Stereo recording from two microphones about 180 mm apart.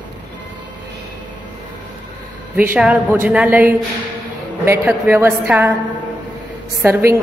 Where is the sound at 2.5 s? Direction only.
10° right (ahead or behind).